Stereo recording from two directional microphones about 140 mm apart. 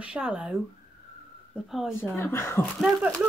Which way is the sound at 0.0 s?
5° right (ahead or behind).